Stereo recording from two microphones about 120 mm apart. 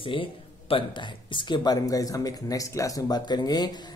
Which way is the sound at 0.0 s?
45° left (ahead or behind).